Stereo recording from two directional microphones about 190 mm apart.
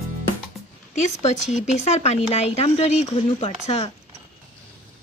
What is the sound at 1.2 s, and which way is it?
Speech, 35° left (ahead or behind).